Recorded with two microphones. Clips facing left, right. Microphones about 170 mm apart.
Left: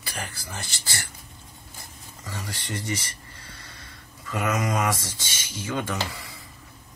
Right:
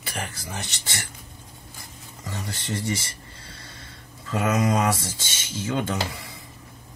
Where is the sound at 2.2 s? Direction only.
25° right (ahead or behind).